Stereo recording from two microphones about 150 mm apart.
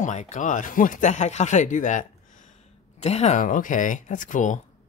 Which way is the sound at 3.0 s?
45° left (ahead or behind).